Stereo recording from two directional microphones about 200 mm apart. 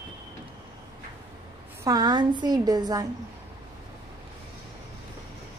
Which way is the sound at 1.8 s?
20° right (ahead or behind).